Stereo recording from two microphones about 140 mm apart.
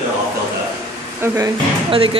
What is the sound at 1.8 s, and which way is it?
Speech, 40° right (ahead or behind).